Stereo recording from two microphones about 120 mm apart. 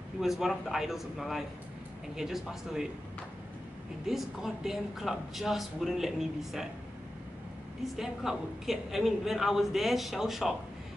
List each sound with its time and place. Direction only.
0.2 s a woman's voice: centre (ahead or behind)
4.1 s a woman's voice: 5° right (ahead or behind)
7.8 s a woman's voice: centre (ahead or behind)